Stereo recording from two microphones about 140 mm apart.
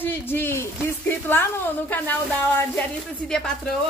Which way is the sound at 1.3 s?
15° left (ahead or behind).